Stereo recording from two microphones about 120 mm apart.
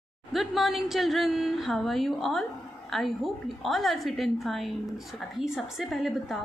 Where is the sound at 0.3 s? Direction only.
Centre (ahead or behind).